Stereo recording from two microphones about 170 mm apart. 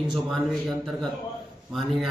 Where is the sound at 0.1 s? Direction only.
Centre (ahead or behind).